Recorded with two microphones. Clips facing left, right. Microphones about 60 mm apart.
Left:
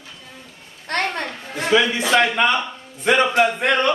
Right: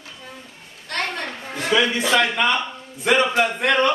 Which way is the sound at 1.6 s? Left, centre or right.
Centre.